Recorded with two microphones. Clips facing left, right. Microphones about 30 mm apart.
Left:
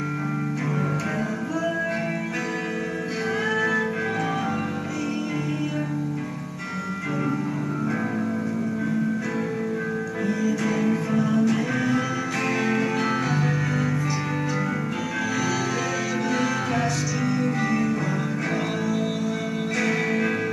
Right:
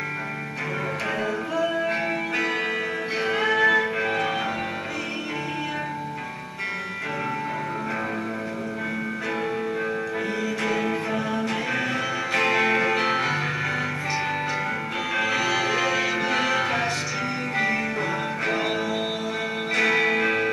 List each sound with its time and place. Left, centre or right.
3.3 s music: right
10.7 s music: right
15.3 s music: right
19.7 s music: right